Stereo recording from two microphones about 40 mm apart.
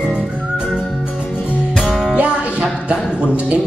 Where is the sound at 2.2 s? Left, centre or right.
Right.